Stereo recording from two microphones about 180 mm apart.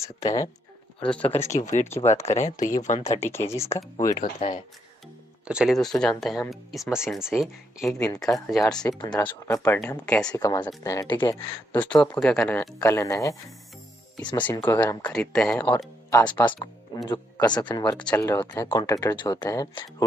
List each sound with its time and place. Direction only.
0.2 s speech: 20° left (ahead or behind)
1.0 s speech: 5° left (ahead or behind)
1.6 s speech: 40° left (ahead or behind)
3.2 s speech: 15° left (ahead or behind)
4.1 s speech: 45° left (ahead or behind)
5.5 s speech: centre (ahead or behind)
8.8 s speech: 20° left (ahead or behind)
10.3 s speech: 20° left (ahead or behind)
11.3 s speech: 10° left (ahead or behind)
14.4 s speech: 15° left (ahead or behind)
16.4 s speech: 25° left (ahead or behind)
18.1 s speech: 10° left (ahead or behind)